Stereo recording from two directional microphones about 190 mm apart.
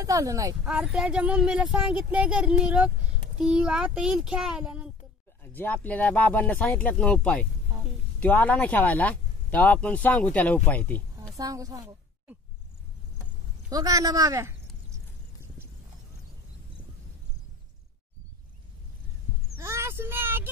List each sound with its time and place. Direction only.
0.0 s speech: 15° right (ahead or behind)
0.7 s speech: 5° right (ahead or behind)
5.4 s speech: 10° left (ahead or behind)
11.3 s speech: 20° right (ahead or behind)
13.7 s speech: 20° right (ahead or behind)
19.6 s vehicle: 15° right (ahead or behind)